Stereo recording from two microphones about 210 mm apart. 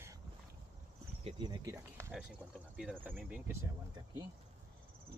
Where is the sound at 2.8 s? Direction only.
5° right (ahead or behind).